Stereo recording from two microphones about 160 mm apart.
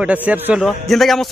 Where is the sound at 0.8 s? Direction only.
Centre (ahead or behind).